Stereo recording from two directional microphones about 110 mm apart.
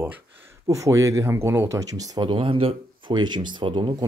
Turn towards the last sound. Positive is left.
turn(degrees=-50)  # may be behind; listen again after turning